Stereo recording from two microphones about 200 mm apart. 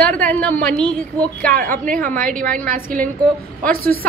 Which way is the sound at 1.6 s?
45° right (ahead or behind).